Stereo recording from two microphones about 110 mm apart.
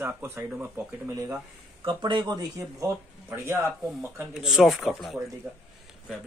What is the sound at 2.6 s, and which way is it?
Speech, 25° right (ahead or behind).